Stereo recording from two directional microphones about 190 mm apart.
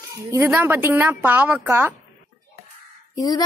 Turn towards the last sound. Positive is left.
turn(degrees=20)  # may be behind; listen again after turning